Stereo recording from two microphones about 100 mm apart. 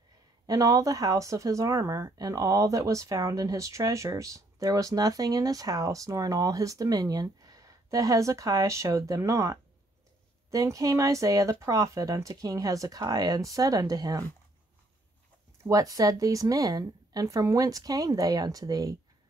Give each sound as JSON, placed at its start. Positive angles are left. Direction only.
{"t": 0.5, "sound": "speech", "side_deg": -35}
{"t": 15.6, "sound": "speech", "side_deg": -35}